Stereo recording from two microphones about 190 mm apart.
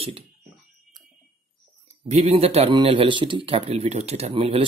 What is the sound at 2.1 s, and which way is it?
Speech, 35° right (ahead or behind).